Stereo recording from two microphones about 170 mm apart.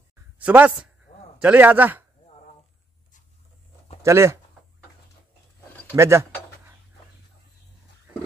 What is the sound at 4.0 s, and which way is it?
Speech, 15° right (ahead or behind).